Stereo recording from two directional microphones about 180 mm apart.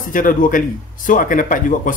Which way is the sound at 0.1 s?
50° left (ahead or behind).